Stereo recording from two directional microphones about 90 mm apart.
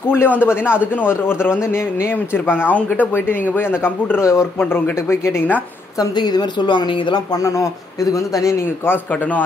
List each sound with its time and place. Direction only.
0.1 s a man's voice: 25° left (ahead or behind)
4.6 s speech: 20° left (ahead or behind)
5.9 s a woman's voice: 50° left (ahead or behind)
7.3 s a man's voice: 40° left (ahead or behind); by 9.4 s 20° left (ahead or behind)